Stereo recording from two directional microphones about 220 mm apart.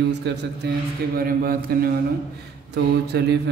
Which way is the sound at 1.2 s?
40° right (ahead or behind).